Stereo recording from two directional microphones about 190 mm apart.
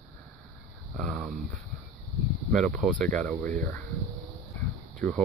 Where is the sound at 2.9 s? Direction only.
40° right (ahead or behind).